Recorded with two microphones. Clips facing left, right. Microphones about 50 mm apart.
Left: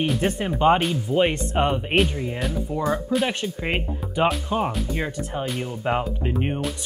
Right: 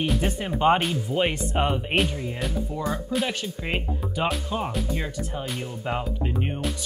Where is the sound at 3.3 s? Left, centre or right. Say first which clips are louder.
Left 3 dB; centre.